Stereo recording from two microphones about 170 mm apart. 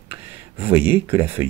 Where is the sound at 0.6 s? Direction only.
10° right (ahead or behind).